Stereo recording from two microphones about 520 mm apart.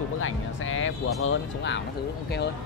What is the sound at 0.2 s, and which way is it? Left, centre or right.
Music, left.